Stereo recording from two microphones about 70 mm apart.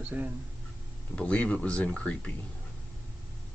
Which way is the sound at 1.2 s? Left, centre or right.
Centre.